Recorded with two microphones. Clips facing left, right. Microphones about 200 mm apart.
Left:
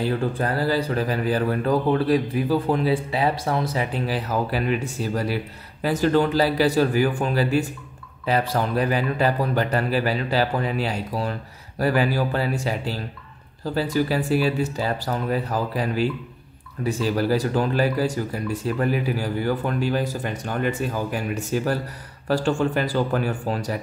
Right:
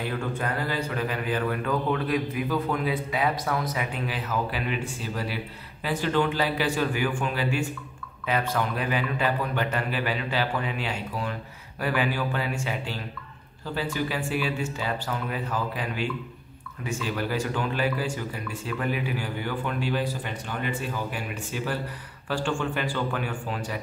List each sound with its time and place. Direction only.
0.0 s speech: 35° left (ahead or behind)